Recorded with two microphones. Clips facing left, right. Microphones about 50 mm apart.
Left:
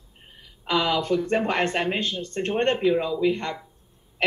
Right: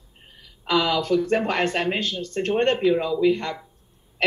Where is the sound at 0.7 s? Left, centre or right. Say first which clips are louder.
Right 2 dB; left.